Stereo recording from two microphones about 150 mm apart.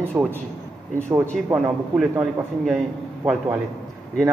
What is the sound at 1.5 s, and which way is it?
Speech, 10° right (ahead or behind).